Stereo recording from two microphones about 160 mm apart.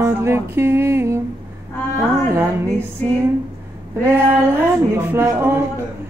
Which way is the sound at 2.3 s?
15° right (ahead or behind).